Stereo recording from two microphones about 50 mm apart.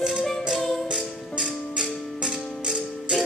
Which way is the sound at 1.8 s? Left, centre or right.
Centre.